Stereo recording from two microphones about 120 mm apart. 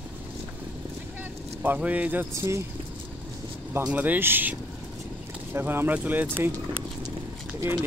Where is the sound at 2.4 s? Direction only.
25° right (ahead or behind).